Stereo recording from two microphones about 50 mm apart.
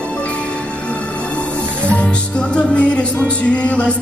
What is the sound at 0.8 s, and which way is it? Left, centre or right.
Music, left.